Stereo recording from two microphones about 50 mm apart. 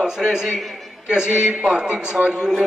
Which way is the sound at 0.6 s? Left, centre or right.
Centre.